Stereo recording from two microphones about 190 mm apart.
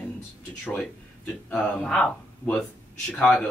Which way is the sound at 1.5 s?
5° left (ahead or behind).